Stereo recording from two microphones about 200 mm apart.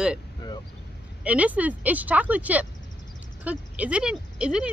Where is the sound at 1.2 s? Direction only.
5° right (ahead or behind).